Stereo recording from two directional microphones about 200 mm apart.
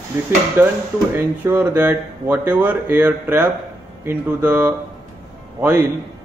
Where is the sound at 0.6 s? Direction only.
10° right (ahead or behind).